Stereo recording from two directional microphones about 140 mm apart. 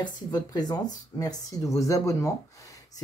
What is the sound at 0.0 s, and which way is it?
Speech, 30° left (ahead or behind).